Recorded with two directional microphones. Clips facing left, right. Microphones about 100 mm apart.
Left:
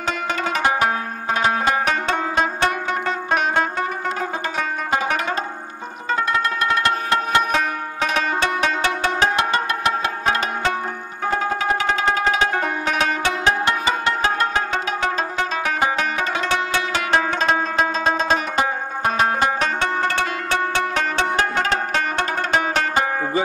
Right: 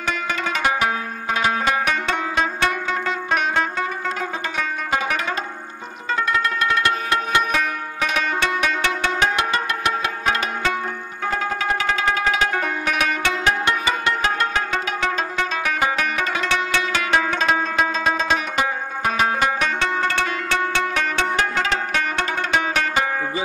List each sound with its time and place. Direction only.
0.0 s music: 40° left (ahead or behind)